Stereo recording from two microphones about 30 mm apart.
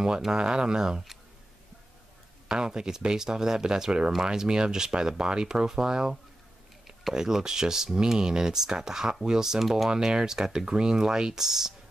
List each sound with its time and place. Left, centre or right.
0.3 s speech: right
2.4 s speech: right
7.2 s speech: right
11.4 s speech: centre